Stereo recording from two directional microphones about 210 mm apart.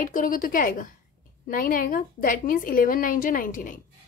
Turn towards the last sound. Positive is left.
turn(degrees=40)  # may be behind; listen again after turning